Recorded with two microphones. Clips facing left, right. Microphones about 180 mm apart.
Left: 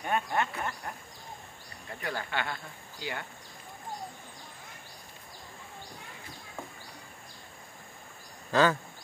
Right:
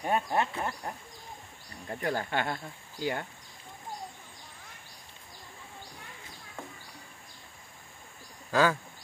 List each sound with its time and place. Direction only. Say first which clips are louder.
0.0 s speech: right 2 dB; 30° right (ahead or behind)
1.9 s speech: right 5 dB; 40° right (ahead or behind)
8.5 s speech: left 1 dB; 10° right (ahead or behind)